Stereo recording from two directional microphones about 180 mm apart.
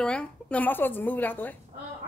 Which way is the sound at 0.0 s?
5° left (ahead or behind).